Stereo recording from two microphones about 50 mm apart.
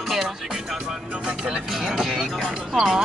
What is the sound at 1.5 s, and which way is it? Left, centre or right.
Speech, centre.